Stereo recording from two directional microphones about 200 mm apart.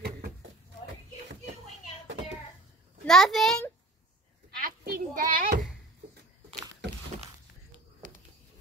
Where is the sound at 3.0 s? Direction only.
Centre (ahead or behind).